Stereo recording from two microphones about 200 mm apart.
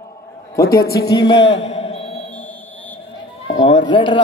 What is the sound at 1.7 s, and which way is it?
Mantra, 30° left (ahead or behind).